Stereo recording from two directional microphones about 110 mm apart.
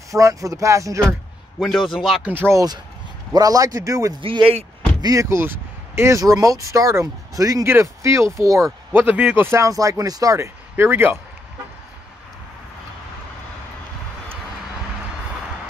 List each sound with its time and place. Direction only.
0.1 s speech: 30° right (ahead or behind)
2.0 s speech: centre (ahead or behind)
2.2 s speech: 15° right (ahead or behind)
2.5 s a man's voice: 35° right (ahead or behind)
4.2 s speech: 50° right (ahead or behind)
5.0 s speech: 30° right (ahead or behind)
8.9 s speech: 20° right (ahead or behind)